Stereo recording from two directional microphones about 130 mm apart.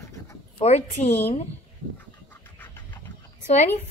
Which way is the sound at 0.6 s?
55° left (ahead or behind).